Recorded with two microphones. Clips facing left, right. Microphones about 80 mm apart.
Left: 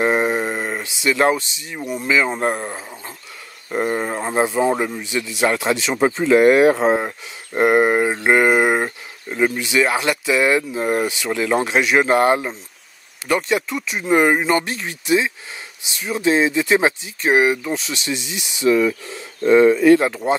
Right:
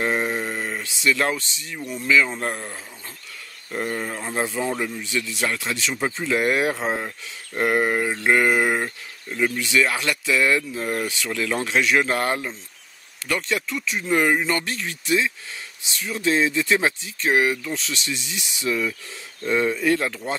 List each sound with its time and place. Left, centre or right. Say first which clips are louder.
0.0 s speech: left 6 dB; left
3.7 s a sound: left 6 dB; left
4.5 s mantra: left 7 dB; left
5.0 s speech: left 6 dB; centre
5.5 s mantra: left 7 dB; left
5.9 s speech: left 10 dB; left
6.7 s speech: left 9 dB; left
7.0 s mantra: left 6 dB; left
13.3 s speech: left 6 dB; centre
18.7 s speech: left 9 dB; left
20.2 s speech: left 9 dB; centre